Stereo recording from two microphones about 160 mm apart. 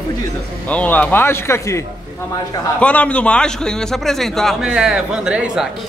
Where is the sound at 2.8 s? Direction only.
10° left (ahead or behind).